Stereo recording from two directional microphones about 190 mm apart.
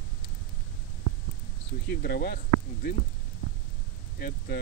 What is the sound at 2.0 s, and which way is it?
Speech, 55° left (ahead or behind).